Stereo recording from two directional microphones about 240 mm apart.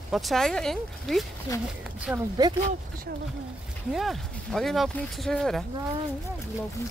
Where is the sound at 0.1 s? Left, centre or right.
Centre.